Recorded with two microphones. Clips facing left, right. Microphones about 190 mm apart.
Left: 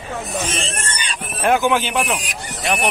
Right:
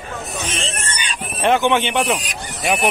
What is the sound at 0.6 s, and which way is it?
Speech, centre (ahead or behind).